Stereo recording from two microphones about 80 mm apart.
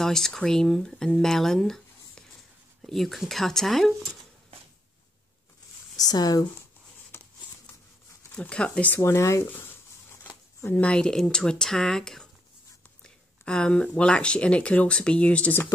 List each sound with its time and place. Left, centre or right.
0.0 s speech: centre
5.9 s speech: left
8.4 s speech: centre
9.0 s speech: left
10.7 s speech: centre